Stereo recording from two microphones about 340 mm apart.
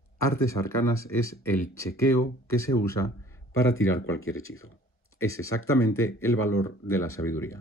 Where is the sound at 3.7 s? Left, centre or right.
Left.